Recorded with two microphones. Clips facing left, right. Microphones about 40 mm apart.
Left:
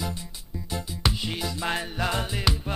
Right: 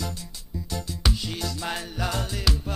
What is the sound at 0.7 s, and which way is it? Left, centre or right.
Music, centre.